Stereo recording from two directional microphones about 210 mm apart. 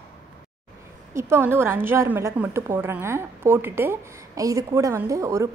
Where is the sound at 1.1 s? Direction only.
10° right (ahead or behind).